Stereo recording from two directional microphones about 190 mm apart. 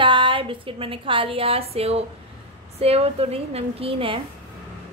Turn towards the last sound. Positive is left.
turn(degrees=-30)  # may be behind; listen again after turning